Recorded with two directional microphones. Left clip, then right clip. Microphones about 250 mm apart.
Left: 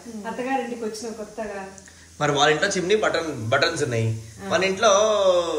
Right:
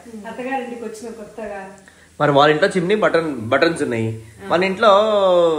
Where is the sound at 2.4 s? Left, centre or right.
Centre.